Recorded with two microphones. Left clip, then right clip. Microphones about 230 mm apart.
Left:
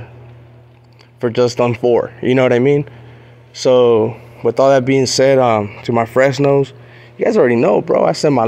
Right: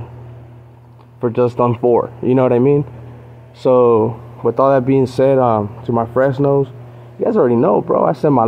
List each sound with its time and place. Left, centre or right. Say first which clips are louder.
1.2 s speech: left 1 dB; centre